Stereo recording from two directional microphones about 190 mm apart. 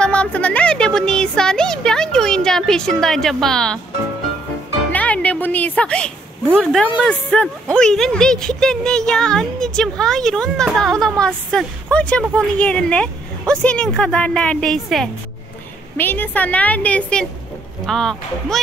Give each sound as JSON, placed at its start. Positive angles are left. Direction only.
{"t": 0.0, "sound": "a sound", "side_deg": 5}
{"t": 4.9, "sound": "music", "side_deg": 5}
{"t": 6.6, "sound": "a woman's voice", "side_deg": 0}